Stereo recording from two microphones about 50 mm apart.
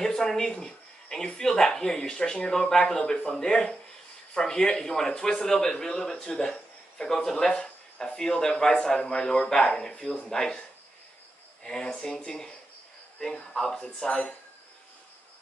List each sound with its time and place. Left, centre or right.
0.0 s a man's voice: centre
11.6 s a man's voice: centre